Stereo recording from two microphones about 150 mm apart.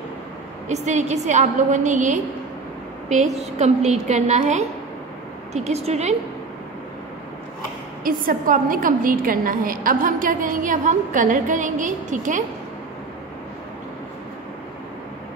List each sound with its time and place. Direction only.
0.7 s a woman's voice: 50° right (ahead or behind)
3.3 s a woman's voice: 50° right (ahead or behind)
8.0 s a woman's voice: 65° right (ahead or behind)